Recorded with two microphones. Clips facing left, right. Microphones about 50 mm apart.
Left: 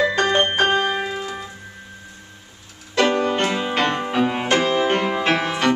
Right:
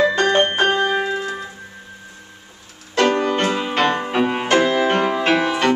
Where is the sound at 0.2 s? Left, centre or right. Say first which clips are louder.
Right 2 dB; centre.